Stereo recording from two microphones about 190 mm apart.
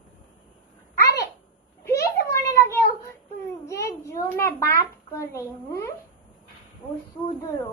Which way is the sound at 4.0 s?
15° left (ahead or behind).